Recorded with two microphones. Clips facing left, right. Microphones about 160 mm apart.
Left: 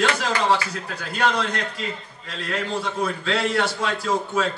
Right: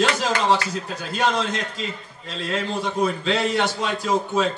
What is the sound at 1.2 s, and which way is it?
A man's voice, 20° right (ahead or behind).